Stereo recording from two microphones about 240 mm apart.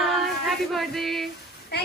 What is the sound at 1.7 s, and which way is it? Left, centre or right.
Speech, left.